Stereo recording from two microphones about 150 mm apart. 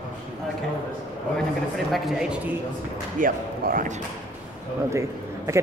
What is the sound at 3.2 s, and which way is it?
Speech, 70° right (ahead or behind).